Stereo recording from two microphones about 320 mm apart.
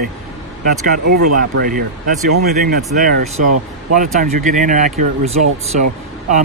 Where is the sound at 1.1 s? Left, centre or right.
Right.